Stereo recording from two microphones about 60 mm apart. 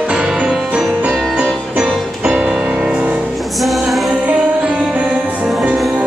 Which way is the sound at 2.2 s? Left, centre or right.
Centre.